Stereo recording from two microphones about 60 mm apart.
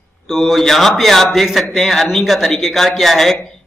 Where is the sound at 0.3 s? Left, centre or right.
Centre.